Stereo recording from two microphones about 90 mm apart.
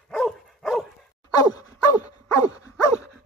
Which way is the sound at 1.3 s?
45° left (ahead or behind).